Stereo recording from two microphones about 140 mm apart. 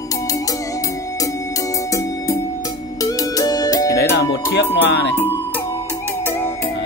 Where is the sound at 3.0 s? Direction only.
25° left (ahead or behind).